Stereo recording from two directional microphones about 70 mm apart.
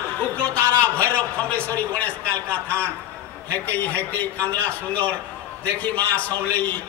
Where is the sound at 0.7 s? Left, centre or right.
Left.